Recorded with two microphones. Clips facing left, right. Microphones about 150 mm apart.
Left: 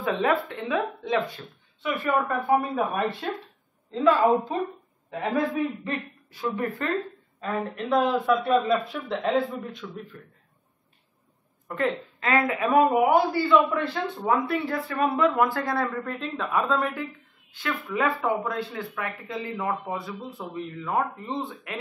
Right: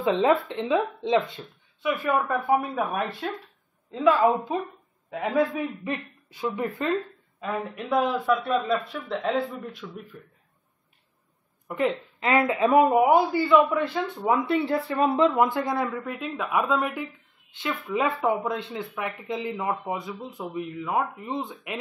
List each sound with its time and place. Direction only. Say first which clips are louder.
0.0 s speech: right 3 dB; 20° right (ahead or behind)
1.9 s a man's voice: right 1 dB; 5° right (ahead or behind)
5.9 s speech: even; 20° right (ahead or behind)
7.3 s speech: left 1 dB; 5° right (ahead or behind)
11.6 s a woman's voice: right 1 dB; 20° right (ahead or behind)
13.0 s a man's voice: right 1 dB; 10° right (ahead or behind)
14.4 s speech: right 3 dB; 25° right (ahead or behind)